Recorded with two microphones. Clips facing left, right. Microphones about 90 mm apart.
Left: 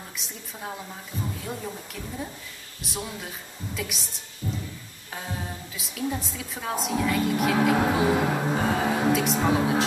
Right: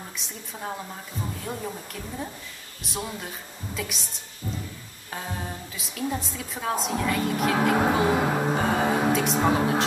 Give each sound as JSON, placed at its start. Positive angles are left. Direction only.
{"t": 0.2, "sound": "a woman's voice", "side_deg": -5}
{"t": 4.4, "sound": "speech", "side_deg": -20}
{"t": 5.1, "sound": "a woman's voice", "side_deg": 0}